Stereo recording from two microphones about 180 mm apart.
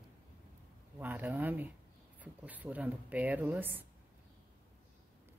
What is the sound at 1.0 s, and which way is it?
A woman's voice, 10° right (ahead or behind).